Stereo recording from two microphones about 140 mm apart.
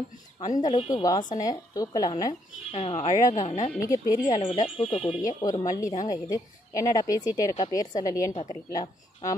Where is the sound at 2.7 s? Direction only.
50° left (ahead or behind).